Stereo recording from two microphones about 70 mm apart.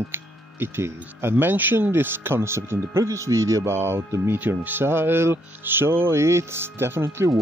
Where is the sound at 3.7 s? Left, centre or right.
Right.